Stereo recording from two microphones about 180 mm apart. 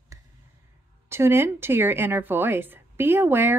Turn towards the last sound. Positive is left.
turn(degrees=-10)  # may be behind; listen again after turning